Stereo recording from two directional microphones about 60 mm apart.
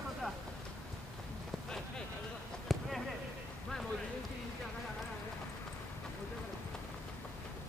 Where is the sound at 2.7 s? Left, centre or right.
Centre.